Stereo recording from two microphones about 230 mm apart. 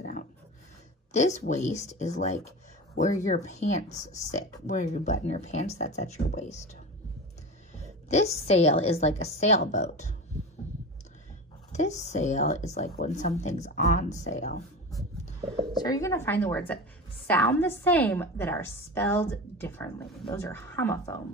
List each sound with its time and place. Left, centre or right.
1.1 s a woman's voice: left
8.1 s a woman's voice: left
11.7 s a woman's voice: left
15.7 s a woman's voice: centre